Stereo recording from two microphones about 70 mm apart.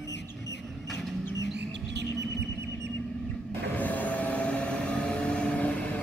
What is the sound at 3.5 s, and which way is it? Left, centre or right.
Vehicle, left.